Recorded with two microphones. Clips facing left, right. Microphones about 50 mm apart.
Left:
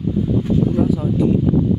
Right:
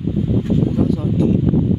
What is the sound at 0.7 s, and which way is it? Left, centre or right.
Speech, centre.